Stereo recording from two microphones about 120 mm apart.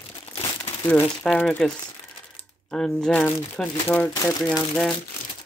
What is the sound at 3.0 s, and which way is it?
Speech, 10° left (ahead or behind).